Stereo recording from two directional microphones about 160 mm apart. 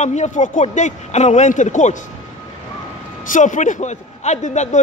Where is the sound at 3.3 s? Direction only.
50° left (ahead or behind).